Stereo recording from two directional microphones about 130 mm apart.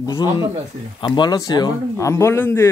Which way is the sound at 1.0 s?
35° left (ahead or behind).